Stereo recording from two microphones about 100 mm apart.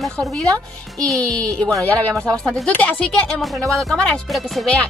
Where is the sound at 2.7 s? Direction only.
15° left (ahead or behind).